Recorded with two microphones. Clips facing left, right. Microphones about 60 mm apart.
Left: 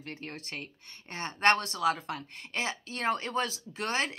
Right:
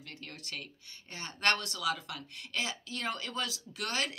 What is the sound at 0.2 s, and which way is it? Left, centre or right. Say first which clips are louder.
A woman's voice: left 4 dB; left.